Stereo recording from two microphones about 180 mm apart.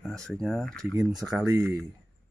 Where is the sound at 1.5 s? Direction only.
5° right (ahead or behind).